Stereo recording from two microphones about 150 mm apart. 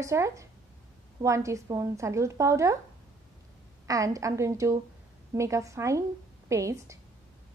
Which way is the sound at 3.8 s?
20° right (ahead or behind).